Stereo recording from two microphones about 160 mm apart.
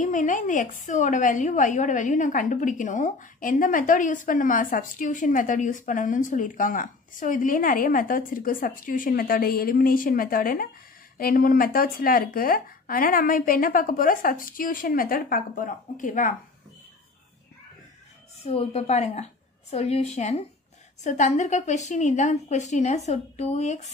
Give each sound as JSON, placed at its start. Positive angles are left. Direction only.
{"t": 0.0, "sound": "a woman's voice", "side_deg": 50}
{"t": 18.4, "sound": "a woman's voice", "side_deg": 35}